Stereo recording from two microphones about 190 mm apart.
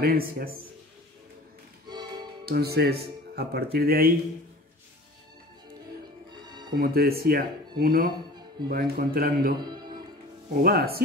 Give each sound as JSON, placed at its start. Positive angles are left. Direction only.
{"t": 0.0, "sound": "speech", "side_deg": -50}
{"t": 1.9, "sound": "music", "side_deg": -25}
{"t": 2.4, "sound": "speech", "side_deg": -55}
{"t": 6.4, "sound": "music", "side_deg": -20}
{"t": 6.7, "sound": "speech", "side_deg": -55}
{"t": 9.6, "sound": "speech", "side_deg": -20}
{"t": 10.5, "sound": "speech", "side_deg": -50}